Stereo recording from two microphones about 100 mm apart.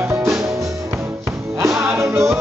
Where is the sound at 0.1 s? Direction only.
25° right (ahead or behind).